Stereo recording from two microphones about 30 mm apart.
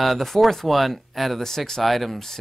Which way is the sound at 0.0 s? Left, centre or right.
Centre.